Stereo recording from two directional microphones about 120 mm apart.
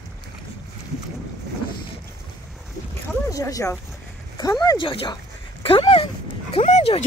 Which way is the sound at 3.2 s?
30° left (ahead or behind).